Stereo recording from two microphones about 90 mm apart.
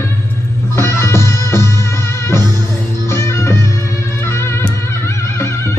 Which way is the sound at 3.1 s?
30° left (ahead or behind).